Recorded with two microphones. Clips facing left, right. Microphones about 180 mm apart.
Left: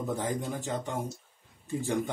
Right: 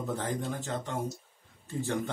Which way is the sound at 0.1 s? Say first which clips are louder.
Left 1 dB; 15° left (ahead or behind).